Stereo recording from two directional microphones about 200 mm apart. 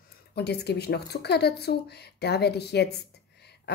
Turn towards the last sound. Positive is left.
turn(degrees=55)  # may be behind; listen again after turning